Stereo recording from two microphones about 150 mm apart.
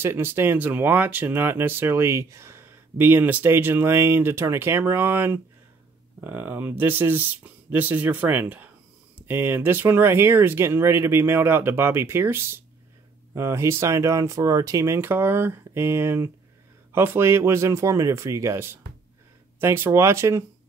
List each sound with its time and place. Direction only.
0.0 s speech: 15° right (ahead or behind)